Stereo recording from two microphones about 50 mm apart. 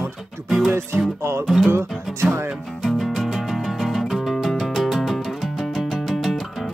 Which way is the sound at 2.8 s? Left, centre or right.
Centre.